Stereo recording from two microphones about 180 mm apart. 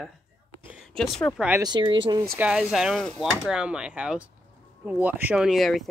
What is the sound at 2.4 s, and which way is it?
Speech, 5° right (ahead or behind).